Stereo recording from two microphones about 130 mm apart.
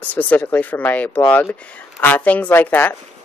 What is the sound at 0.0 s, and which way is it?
Speech, 10° left (ahead or behind).